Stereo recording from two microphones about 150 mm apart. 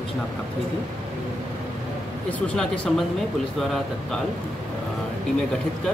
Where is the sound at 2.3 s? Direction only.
10° left (ahead or behind).